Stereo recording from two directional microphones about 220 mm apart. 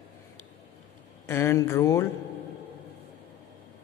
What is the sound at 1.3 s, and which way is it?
Speech, 10° left (ahead or behind).